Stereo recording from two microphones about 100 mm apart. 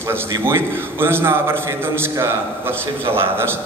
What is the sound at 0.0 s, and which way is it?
A man's voice, 25° right (ahead or behind).